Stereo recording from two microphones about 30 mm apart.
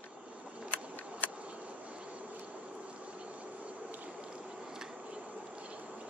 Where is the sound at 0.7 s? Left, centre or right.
Left.